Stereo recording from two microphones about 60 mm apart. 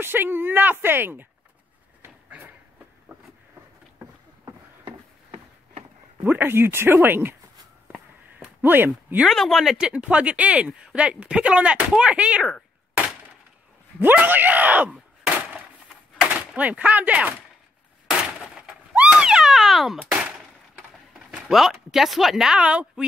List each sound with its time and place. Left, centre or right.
0.0 s speech: right
6.2 s speech: right
8.6 s speech: right
9.3 s speech: centre
9.8 s speech: centre
13.9 s speech: right
14.9 s a sound: centre
16.3 s speech: right
19.0 s cat: centre
21.3 s speech: centre
22.5 s a woman's voice: centre